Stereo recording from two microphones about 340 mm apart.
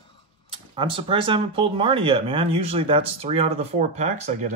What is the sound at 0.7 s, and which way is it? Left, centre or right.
Speech, centre.